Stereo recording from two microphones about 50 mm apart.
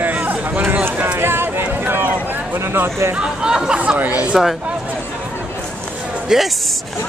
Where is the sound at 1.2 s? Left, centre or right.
Right.